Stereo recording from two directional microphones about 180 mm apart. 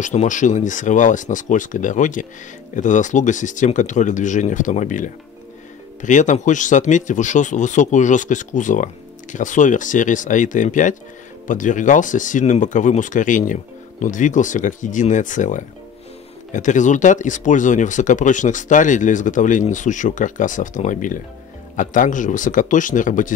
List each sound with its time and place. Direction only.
0.0 s speech: 40° left (ahead or behind)